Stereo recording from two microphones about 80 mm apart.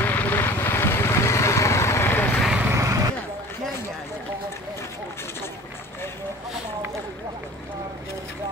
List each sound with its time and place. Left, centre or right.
0.0 s vehicle: left
2.7 s vehicle: right